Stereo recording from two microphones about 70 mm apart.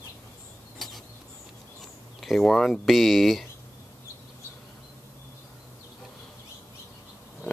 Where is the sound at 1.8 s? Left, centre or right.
Centre.